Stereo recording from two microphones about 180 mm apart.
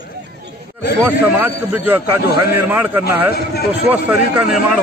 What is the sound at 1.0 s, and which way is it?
A man's voice, 10° right (ahead or behind).